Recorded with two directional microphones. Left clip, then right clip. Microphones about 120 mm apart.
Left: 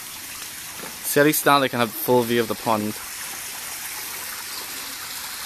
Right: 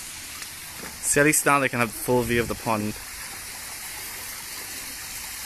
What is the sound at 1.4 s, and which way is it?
Speech, 15° left (ahead or behind).